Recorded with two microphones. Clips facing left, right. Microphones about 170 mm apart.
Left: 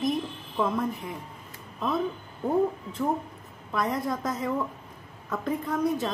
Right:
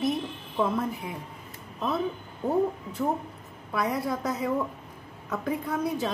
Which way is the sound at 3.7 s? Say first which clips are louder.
Even; 5° right (ahead or behind).